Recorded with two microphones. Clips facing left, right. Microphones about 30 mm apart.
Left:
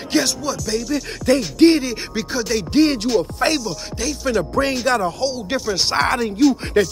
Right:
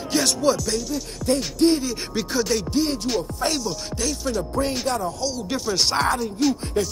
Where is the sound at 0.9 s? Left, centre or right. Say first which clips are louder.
Left 9 dB; left.